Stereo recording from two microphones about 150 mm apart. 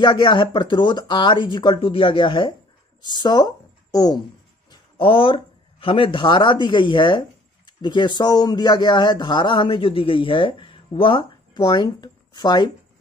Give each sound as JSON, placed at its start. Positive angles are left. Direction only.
{"t": 0.0, "sound": "a woman's voice", "side_deg": 30}
{"t": 4.6, "sound": "a man's voice", "side_deg": 35}